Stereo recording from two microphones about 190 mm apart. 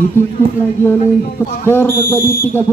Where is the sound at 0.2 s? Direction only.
10° left (ahead or behind).